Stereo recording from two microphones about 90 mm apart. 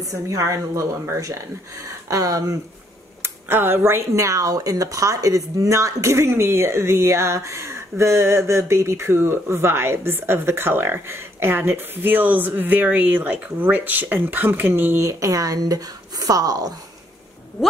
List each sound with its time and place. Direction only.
0.0 s a woman's voice: 40° right (ahead or behind)
3.2 s speech: 25° right (ahead or behind); by 16.7 s 45° right (ahead or behind)